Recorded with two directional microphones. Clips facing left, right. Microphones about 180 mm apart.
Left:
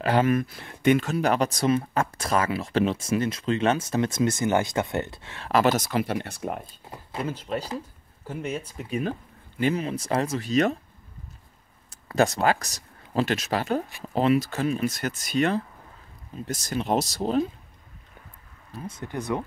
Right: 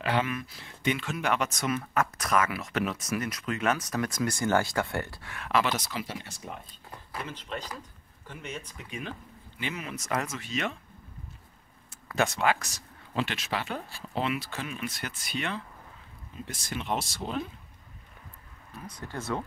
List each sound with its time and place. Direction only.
0.0 s speech: 40° left (ahead or behind); by 5.5 s 25° left (ahead or behind)
5.5 s speech: 45° left (ahead or behind)
8.3 s speech: 10° left (ahead or behind)
8.7 s speech: 40° left (ahead or behind)
11.9 s speech: 35° left (ahead or behind)
18.8 s speech: 25° left (ahead or behind)